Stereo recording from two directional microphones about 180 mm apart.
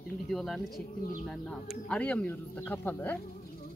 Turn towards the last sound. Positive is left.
turn(degrees=10)  # may be behind; listen again after turning